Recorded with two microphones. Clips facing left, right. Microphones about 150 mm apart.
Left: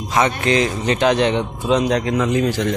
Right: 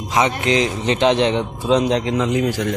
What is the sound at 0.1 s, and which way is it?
A man's voice, 15° right (ahead or behind).